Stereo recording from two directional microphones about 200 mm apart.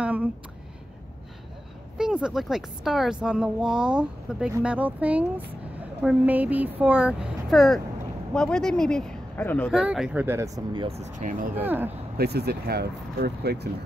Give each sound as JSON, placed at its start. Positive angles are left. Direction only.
{"t": 0.0, "sound": "speech", "side_deg": -5}
{"t": 2.0, "sound": "a woman's voice", "side_deg": -5}
{"t": 9.8, "sound": "speech", "side_deg": -5}
{"t": 11.5, "sound": "speech", "side_deg": -10}
{"t": 12.2, "sound": "speech", "side_deg": -55}